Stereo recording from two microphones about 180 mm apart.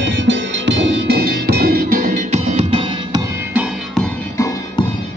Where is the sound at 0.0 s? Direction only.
85° right; by 2.8 s 35° right (ahead or behind).